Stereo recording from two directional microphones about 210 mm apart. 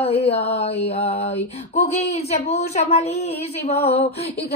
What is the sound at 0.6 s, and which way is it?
A woman's voice, 30° left (ahead or behind).